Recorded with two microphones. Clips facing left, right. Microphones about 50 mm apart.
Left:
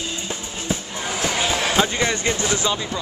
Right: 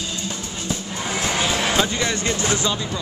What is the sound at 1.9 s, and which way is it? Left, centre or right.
Vehicle, left.